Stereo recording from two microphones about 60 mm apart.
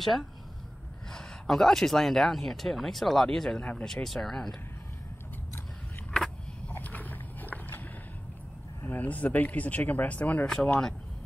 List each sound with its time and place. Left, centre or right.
0.0 s speech: centre
6.7 s a sound: left
8.8 s speech: left
10.4 s speech: centre